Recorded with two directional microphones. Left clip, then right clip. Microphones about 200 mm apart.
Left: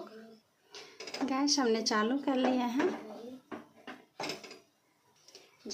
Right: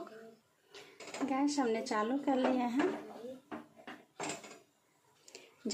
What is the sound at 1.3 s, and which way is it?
Speech, 15° left (ahead or behind).